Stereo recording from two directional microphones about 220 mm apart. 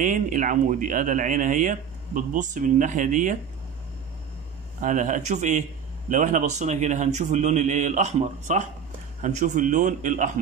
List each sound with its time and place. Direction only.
0.0 s speech: 35° right (ahead or behind)
4.7 s speech: 35° right (ahead or behind)